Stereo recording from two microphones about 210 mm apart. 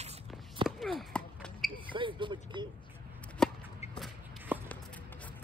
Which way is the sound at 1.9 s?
25° right (ahead or behind).